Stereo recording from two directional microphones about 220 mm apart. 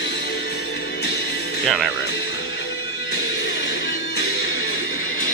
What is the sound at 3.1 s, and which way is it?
Music, 55° left (ahead or behind).